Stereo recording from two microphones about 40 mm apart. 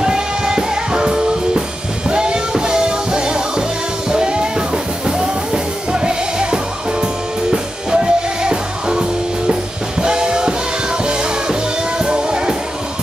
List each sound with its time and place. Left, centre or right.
0.0 s music: centre